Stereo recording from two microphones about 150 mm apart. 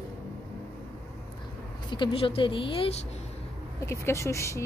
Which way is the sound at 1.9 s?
35° left (ahead or behind).